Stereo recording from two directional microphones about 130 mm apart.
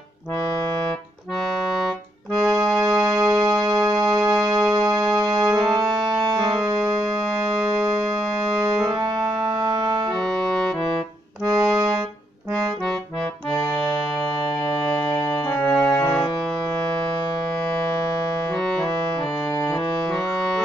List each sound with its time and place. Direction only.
2.3 s accordion: 30° right (ahead or behind)
3.1 s music: 30° right (ahead or behind)
8.8 s music: 30° right (ahead or behind)
10.1 s music: 5° left (ahead or behind)
11.4 s accordion: 30° right (ahead or behind)
15.2 s music: 10° left (ahead or behind)
18.5 s music: 5° left (ahead or behind)
20.2 s music: 5° left (ahead or behind)